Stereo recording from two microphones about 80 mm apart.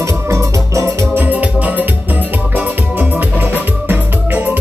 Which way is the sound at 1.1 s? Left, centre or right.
Right.